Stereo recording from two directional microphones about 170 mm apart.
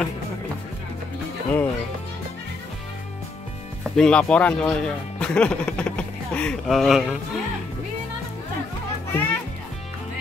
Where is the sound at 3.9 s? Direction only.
5° left (ahead or behind).